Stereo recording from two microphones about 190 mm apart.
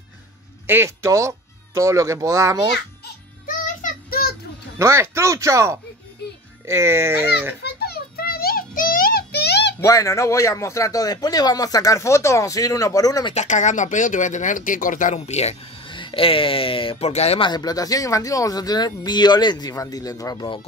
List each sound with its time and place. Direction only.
0.7 s speech: 15° right (ahead or behind)
3.4 s child singing: 45° left (ahead or behind)
4.7 s speech: 15° right (ahead or behind)
7.6 s music: 55° left (ahead or behind)
9.8 s speech: 15° left (ahead or behind)
13.3 s speech: 40° left (ahead or behind); by 20.6 s 25° left (ahead or behind)